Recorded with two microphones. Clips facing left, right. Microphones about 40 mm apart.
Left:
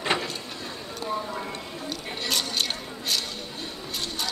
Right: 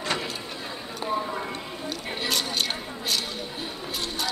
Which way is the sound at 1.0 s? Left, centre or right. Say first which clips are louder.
Right 2 dB; centre.